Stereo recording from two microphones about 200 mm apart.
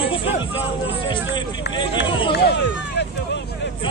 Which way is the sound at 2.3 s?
60° left (ahead or behind).